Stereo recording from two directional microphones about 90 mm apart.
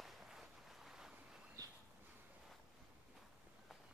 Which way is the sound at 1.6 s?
45° right (ahead or behind).